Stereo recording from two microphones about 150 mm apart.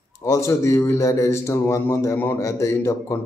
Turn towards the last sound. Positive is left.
turn(degrees=20)  # may be behind; listen again after turning